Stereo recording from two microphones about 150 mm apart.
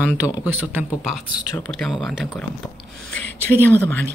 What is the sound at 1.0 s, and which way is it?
Speech, 5° right (ahead or behind).